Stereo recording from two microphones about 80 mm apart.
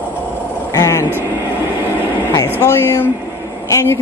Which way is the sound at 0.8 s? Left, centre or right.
Left.